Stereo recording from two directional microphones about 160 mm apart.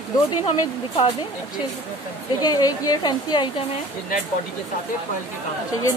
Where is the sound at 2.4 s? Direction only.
25° left (ahead or behind).